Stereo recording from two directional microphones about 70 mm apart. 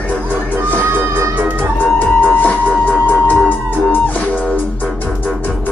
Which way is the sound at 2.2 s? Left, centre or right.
Left.